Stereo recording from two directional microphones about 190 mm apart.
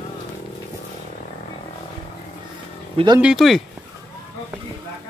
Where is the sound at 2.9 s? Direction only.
25° right (ahead or behind).